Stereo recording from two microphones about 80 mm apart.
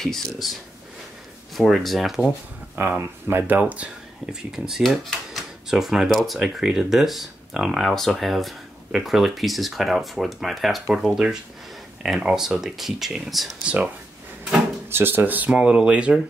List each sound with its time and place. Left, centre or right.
0.0 s speech: centre
3.0 s speech: right; by 13.6 s centre
14.9 s speech: right